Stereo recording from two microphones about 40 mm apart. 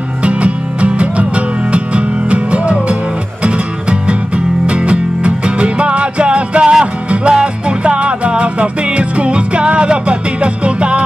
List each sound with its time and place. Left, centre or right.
0.2 s music: right
4.6 s music: right